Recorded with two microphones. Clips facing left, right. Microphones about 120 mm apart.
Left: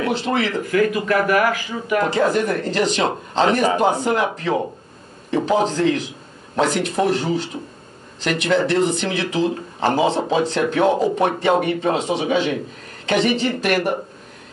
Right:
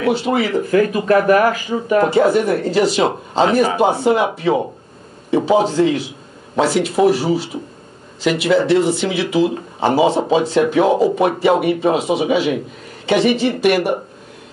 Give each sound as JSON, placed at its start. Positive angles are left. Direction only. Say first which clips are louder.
{"t": 0.0, "sound": "speech", "louder": "right 4 dB", "side_deg": -5}
{"t": 0.7, "sound": "speech", "louder": "right 4 dB", "side_deg": -30}
{"t": 2.1, "sound": "a woman's voice", "louder": "right 5 dB", "side_deg": -10}